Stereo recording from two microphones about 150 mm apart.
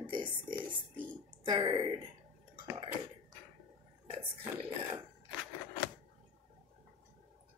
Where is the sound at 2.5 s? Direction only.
30° right (ahead or behind).